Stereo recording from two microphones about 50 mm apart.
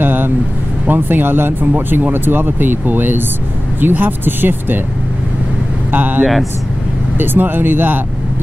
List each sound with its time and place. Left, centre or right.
0.0 s vehicle: right
0.8 s speech: right
5.9 s speech: right